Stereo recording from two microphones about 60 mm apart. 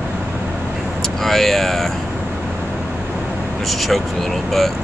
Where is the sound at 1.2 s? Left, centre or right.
Centre.